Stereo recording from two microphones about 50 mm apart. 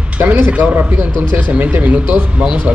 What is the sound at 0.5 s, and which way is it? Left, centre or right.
Speech, right.